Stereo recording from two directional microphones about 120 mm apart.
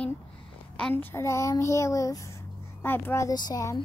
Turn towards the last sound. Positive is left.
turn(degrees=30)  # may be behind; listen again after turning